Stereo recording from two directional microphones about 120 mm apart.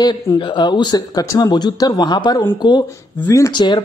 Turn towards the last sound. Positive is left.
turn(degrees=35)  # may be behind; listen again after turning